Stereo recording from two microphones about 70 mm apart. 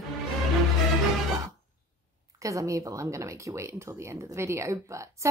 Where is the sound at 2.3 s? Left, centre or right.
Right.